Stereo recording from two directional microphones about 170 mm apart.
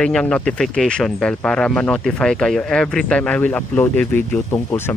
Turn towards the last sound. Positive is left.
turn(degrees=10)  # may be behind; listen again after turning